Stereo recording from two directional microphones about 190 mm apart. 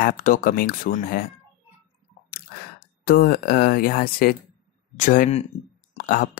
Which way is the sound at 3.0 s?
50° left (ahead or behind).